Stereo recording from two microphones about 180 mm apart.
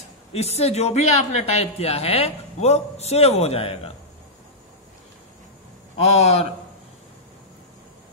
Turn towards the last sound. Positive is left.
turn(degrees=35)  # may be behind; listen again after turning